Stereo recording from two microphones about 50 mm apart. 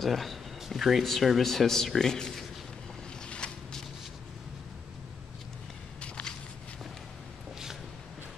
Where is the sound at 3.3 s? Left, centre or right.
Centre.